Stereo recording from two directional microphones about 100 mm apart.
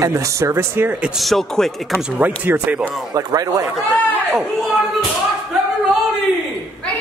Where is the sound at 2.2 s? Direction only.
15° right (ahead or behind).